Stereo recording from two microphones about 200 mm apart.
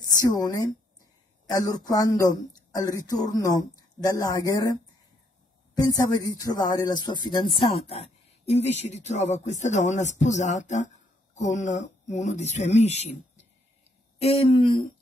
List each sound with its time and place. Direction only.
0.2 s a woman's voice: 20° left (ahead or behind)
5.8 s speech: 20° left (ahead or behind); by 13.2 s 35° left (ahead or behind)
14.2 s speech: 30° left (ahead or behind)